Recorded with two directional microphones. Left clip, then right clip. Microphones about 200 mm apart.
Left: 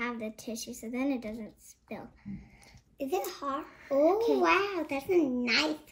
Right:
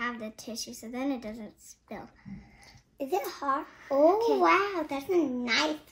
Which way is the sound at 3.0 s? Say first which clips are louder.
Right 2 dB; 30° right (ahead or behind).